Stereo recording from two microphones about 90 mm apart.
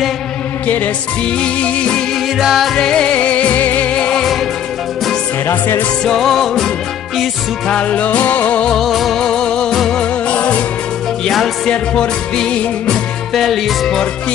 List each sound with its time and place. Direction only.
1.4 s music: 15° left (ahead or behind)
2.3 s music: centre (ahead or behind)
5.5 s music: 25° left (ahead or behind)
6.0 s music: 5° left (ahead or behind)
8.7 s music: centre (ahead or behind)
11.2 s music: centre (ahead or behind)